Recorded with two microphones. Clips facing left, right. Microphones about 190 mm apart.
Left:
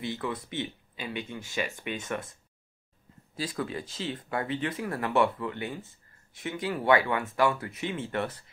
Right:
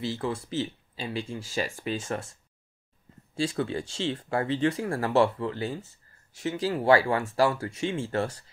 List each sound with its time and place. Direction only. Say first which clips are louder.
0.0 s speech: right 3 dB; 30° right (ahead or behind)
3.3 s speech: right 5 dB; 30° right (ahead or behind)